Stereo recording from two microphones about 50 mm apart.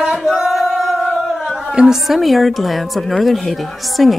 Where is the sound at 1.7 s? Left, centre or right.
Centre.